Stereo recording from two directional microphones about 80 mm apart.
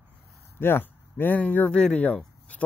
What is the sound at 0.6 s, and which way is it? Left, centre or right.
Speech, left.